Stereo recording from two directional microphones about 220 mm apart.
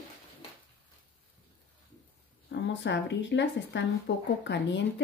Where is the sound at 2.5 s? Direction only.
55° left (ahead or behind).